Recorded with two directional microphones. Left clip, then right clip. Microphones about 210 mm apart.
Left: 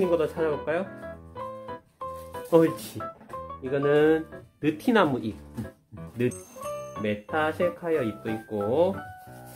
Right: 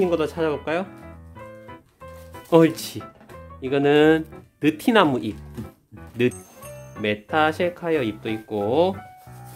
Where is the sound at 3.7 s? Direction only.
35° right (ahead or behind).